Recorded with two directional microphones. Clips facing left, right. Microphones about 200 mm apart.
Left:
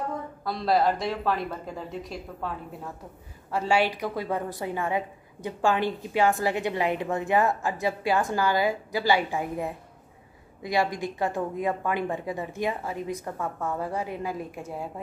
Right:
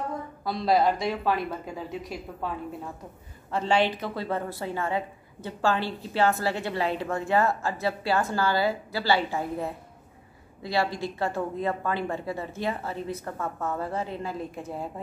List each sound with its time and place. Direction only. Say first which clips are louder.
0.5 s speech: right 1 dB; centre (ahead or behind)
3.5 s a woman's voice: even; 10° left (ahead or behind)